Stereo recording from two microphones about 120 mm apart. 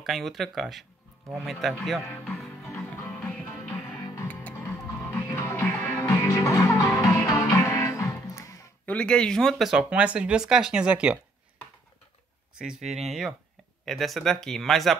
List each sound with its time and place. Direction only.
0.0 s speech: centre (ahead or behind)
2.2 s music: 5° left (ahead or behind)
4.0 s music: 30° left (ahead or behind)
4.3 s music: 15° left (ahead or behind)
8.8 s speech: 10° left (ahead or behind); by 11.1 s 10° right (ahead or behind)
12.5 s speech: 5° right (ahead or behind)